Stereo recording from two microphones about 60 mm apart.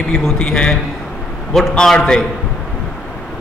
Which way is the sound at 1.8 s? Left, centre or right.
Centre.